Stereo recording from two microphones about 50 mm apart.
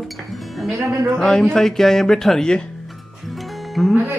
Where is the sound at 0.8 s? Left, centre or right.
Right.